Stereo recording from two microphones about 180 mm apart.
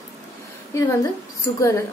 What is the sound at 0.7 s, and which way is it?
Speech, 15° left (ahead or behind).